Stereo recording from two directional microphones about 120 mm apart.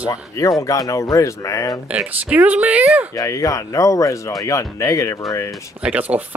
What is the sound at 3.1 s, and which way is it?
Speech, 30° left (ahead or behind).